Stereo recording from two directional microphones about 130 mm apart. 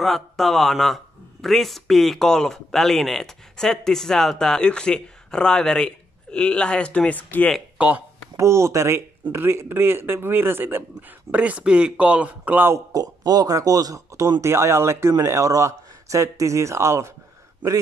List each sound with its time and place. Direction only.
0.0 s speech: centre (ahead or behind)
7.5 s speech: 10° right (ahead or behind)
8.4 s speech: 20° right (ahead or behind)